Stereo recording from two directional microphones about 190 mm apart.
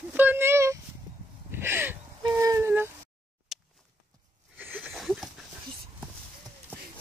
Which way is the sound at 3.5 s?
Centre (ahead or behind).